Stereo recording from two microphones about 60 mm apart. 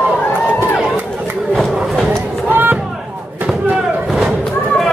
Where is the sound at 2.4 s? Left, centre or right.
Right.